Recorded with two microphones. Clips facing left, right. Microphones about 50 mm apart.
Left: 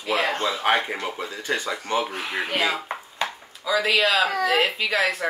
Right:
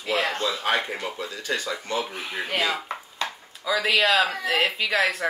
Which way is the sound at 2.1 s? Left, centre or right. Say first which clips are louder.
Left 3 dB; left.